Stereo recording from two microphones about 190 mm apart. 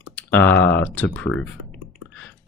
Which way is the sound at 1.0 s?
5° left (ahead or behind).